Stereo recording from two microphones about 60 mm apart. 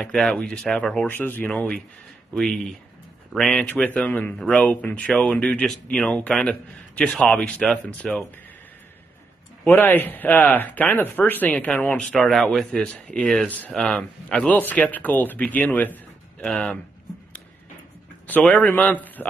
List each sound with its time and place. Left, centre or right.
0.0 s speech: centre
1.0 s speech: left
2.3 s speech: centre
9.7 s speech: left
12.2 s speech: centre
12.4 s speech: centre
14.5 s speech: left
16.4 s speech: centre
18.4 s speech: left